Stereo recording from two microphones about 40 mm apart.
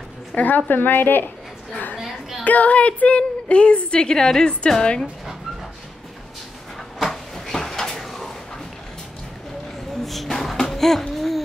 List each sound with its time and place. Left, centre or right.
0.4 s a woman's voice: left
2.4 s a woman's voice: left; by 5.0 s centre
7.0 s cupboard open or close: centre
10.0 s a sound: centre